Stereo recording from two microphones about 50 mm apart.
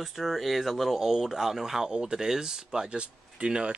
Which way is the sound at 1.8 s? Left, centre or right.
Centre.